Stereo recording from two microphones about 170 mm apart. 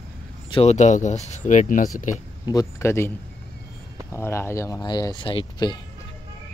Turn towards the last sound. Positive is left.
turn(degrees=30)  # may be behind; listen again after turning